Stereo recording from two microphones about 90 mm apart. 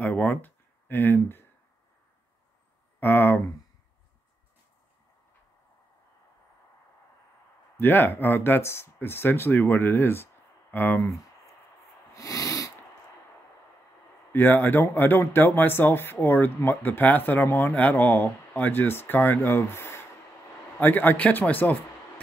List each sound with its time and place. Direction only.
0.0 s speech: 15° left (ahead or behind)
3.0 s speech: 25° left (ahead or behind)
7.8 s speech: 25° left (ahead or behind)
12.1 s a sound: 40° left (ahead or behind)
14.3 s speech: 20° left (ahead or behind)